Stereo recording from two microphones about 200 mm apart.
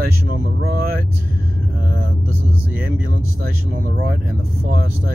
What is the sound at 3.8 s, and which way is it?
Speech, 45° right (ahead or behind).